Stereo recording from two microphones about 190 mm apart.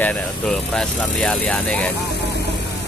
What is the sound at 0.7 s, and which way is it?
Speech, 5° left (ahead or behind).